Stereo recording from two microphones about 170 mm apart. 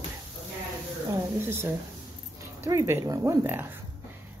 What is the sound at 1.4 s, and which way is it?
A woman's voice, 15° right (ahead or behind).